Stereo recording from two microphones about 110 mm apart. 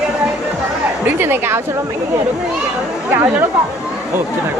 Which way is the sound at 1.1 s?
20° right (ahead or behind).